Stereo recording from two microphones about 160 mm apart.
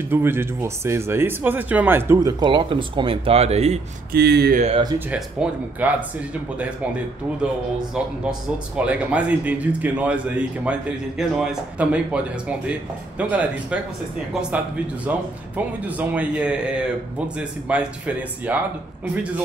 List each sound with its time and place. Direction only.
0.1 s speech: 15° right (ahead or behind); by 3.8 s 40° right (ahead or behind)
4.1 s speech: 90° right
4.9 s speech: 10° right (ahead or behind)
8.7 s speech: 10° right (ahead or behind)
15.0 s speech: 10° right (ahead or behind)